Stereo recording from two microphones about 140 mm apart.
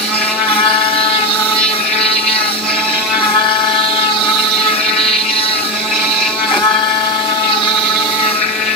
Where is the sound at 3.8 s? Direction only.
40° left (ahead or behind).